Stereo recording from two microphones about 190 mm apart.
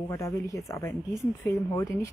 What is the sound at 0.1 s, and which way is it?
A woman's voice, 15° left (ahead or behind).